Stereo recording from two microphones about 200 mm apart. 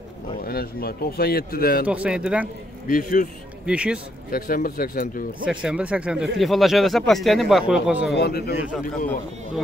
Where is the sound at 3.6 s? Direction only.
5° right (ahead or behind).